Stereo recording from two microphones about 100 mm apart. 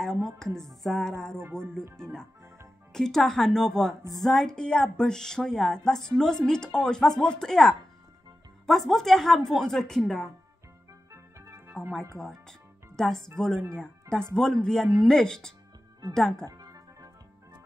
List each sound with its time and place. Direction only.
0.0 s speech: 5° left (ahead or behind)
11.1 s organ: 30° right (ahead or behind)
12.2 s music: 5° left (ahead or behind)
13.4 s speech: 5° left (ahead or behind)
16.4 s music: 35° right (ahead or behind)